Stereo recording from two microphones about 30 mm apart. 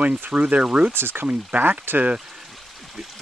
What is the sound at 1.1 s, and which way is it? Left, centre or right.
Speech, right.